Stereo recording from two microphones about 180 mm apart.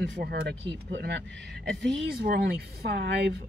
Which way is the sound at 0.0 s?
70° right (ahead or behind).